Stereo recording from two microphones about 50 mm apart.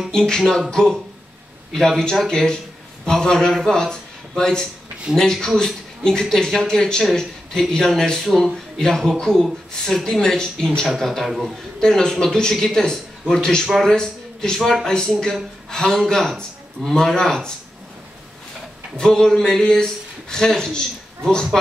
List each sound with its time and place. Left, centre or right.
0.1 s a man's voice: centre
11.8 s speech: centre
18.9 s speech: centre